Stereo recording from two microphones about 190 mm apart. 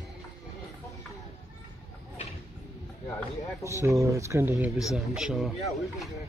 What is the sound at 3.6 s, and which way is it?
Speech, 15° right (ahead or behind).